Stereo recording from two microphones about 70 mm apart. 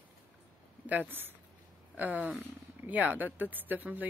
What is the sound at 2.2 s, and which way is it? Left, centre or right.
Speech, right.